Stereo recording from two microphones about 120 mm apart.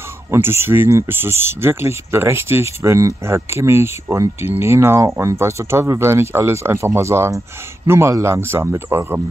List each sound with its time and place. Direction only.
0.3 s speech: 20° right (ahead or behind)